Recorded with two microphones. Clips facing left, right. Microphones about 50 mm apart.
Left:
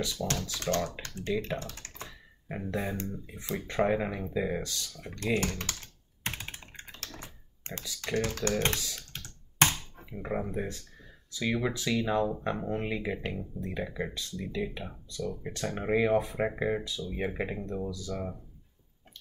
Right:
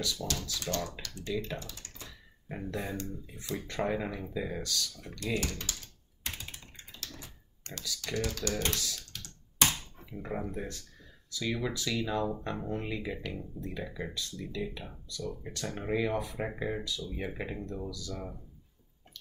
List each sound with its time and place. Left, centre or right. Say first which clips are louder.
0.2 s speech: left 3 dB; left
1.0 s speech: left 4 dB; left
1.6 s typing: left 5 dB; left
2.0 s computer keyboard: left 3 dB; left
2.7 s speech: left 3 dB; centre
4.9 s computer keyboard: left 7 dB; left
7.2 s computer keyboard: left 4 dB; left
8.0 s speech: left 4 dB; left
8.7 s speech: left 1 dB; left
12.3 s speech: left 3 dB; centre
12.5 s speech: left 3 dB; left